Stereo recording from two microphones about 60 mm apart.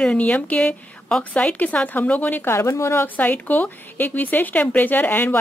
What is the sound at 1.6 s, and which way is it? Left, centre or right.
Speech, left.